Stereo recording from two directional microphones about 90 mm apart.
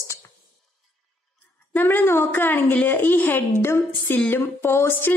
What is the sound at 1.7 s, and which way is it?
A woman's voice, 20° left (ahead or behind).